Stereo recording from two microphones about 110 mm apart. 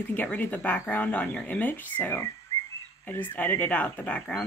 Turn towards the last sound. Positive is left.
turn(degrees=15)  # may be behind; listen again after turning